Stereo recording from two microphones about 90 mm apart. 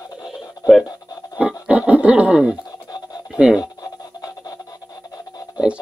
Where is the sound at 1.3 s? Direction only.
15° right (ahead or behind).